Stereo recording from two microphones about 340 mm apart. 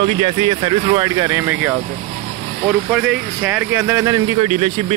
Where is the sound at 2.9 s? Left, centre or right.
Centre.